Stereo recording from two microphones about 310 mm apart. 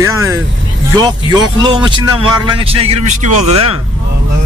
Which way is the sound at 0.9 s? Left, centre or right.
Centre.